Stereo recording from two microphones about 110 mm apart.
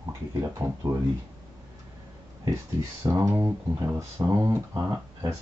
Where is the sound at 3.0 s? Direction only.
25° right (ahead or behind).